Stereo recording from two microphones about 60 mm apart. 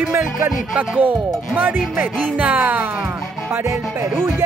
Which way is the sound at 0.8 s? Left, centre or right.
Right.